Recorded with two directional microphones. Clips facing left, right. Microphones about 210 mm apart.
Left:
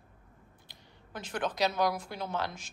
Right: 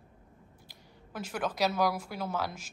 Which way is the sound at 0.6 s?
5° right (ahead or behind).